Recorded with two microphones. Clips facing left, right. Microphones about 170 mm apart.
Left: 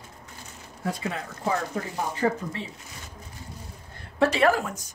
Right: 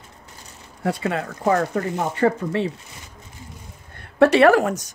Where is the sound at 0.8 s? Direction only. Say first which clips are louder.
Right 7 dB; 65° right (ahead or behind).